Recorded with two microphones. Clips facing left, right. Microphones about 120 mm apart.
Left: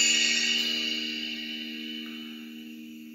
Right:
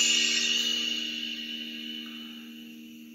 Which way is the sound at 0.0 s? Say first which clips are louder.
Left 1 dB; 20° right (ahead or behind).